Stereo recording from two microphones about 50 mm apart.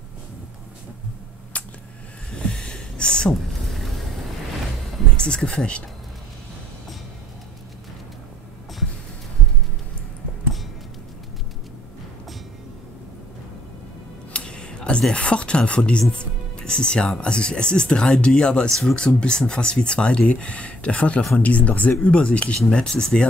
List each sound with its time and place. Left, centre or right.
1.5 s a sound: left
5.1 s speech: centre
14.3 s speech: centre